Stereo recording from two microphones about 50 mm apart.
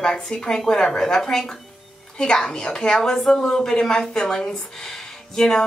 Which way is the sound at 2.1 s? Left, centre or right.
Centre.